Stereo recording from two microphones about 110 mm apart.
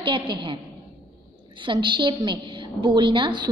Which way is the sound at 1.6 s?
45° right (ahead or behind).